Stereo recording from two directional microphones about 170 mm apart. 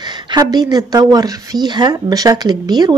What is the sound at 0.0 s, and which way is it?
Speech, 25° right (ahead or behind).